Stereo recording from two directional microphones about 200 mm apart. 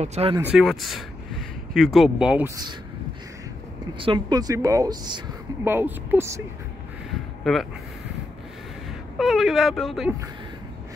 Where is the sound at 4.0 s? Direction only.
25° right (ahead or behind).